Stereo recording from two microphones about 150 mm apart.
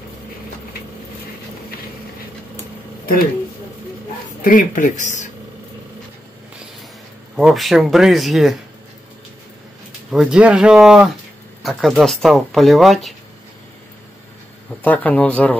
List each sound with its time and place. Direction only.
4.4 s speech: 65° left (ahead or behind)
7.3 s speech: centre (ahead or behind)
10.1 s speech: 5° right (ahead or behind)
14.8 s speech: 10° left (ahead or behind)